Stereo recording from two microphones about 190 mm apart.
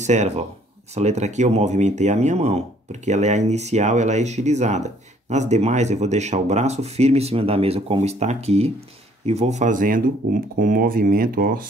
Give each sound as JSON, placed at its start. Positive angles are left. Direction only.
{"t": 0.0, "sound": "speech", "side_deg": -40}